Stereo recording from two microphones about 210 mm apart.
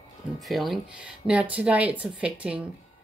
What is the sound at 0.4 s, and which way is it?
Speech, centre (ahead or behind).